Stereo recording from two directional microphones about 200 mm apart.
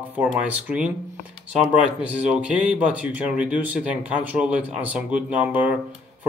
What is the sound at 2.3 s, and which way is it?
Speech, 5° right (ahead or behind).